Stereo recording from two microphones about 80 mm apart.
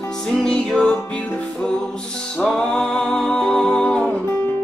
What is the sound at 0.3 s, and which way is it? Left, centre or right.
Music, centre.